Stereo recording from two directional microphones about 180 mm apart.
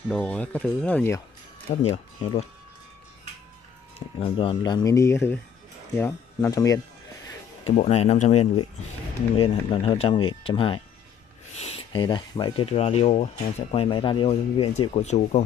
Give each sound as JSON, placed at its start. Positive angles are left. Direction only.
{"t": 0.1, "sound": "speech", "side_deg": 5}
{"t": 1.7, "sound": "speech", "side_deg": 35}
{"t": 4.2, "sound": "speech", "side_deg": 30}
{"t": 7.6, "sound": "speech", "side_deg": 40}
{"t": 9.7, "sound": "speech", "side_deg": 35}